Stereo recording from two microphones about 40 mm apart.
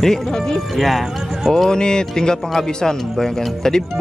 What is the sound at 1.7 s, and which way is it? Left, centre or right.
Speech, centre.